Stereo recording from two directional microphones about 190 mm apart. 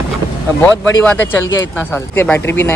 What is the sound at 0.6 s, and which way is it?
Speech, 10° left (ahead or behind).